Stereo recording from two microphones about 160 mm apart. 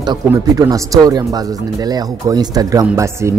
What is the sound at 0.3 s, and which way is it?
Speech, 20° right (ahead or behind).